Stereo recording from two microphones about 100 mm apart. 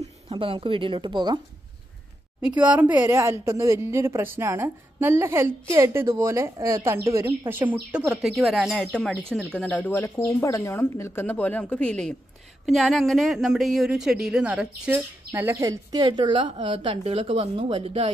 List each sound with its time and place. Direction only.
0.3 s a woman's voice: 60° right (ahead or behind)
2.4 s a woman's voice: 15° right (ahead or behind)
3.2 s a woman's voice: 30° right (ahead or behind)
7.9 s a woman's voice: 10° right (ahead or behind)
9.6 s speech: 15° left (ahead or behind)
10.1 s a woman's voice: 30° left (ahead or behind); by 14.7 s 10° right (ahead or behind)
14.9 s speech: 20° right (ahead or behind); by 16.1 s 35° right (ahead or behind)
16.1 s a woman's voice: 55° right (ahead or behind); by 18.1 s 80° right